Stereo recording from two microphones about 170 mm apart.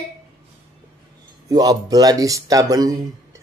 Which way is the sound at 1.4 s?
20° right (ahead or behind).